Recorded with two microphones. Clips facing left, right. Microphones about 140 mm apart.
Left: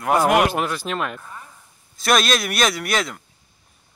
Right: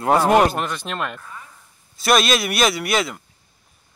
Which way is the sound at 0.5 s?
5° left (ahead or behind).